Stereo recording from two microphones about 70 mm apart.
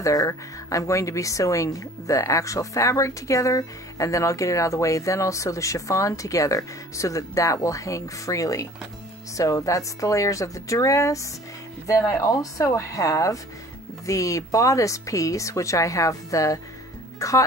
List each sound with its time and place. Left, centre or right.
0.0 s speech: left
12.0 s speech: left
12.3 s speech: left